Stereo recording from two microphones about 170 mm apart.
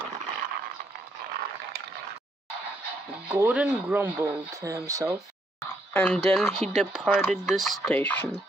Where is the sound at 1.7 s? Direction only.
75° right (ahead or behind).